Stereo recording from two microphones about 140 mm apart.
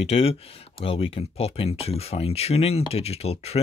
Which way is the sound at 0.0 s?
45° left (ahead or behind).